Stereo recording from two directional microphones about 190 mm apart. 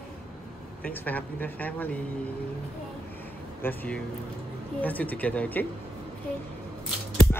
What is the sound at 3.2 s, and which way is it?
Air conditioning, 10° left (ahead or behind).